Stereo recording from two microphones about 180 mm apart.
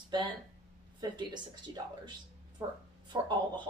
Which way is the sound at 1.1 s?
25° right (ahead or behind).